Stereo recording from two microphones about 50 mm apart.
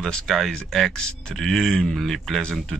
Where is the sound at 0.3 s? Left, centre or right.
Centre.